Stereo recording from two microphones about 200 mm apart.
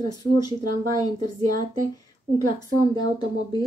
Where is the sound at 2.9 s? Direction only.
20° left (ahead or behind).